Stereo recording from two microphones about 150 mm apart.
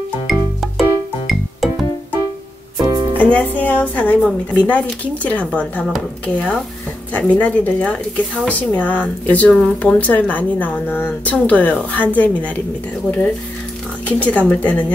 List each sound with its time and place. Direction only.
0.3 s music: centre (ahead or behind)
3.2 s speech: 10° left (ahead or behind)
14.0 s speech: 10° left (ahead or behind)